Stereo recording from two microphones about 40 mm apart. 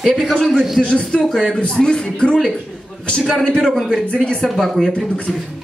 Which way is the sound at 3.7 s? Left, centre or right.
Centre.